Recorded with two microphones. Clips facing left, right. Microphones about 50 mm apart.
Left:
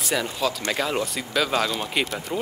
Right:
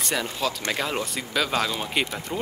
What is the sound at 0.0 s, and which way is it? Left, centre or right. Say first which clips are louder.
Speech: left 2 dB; centre.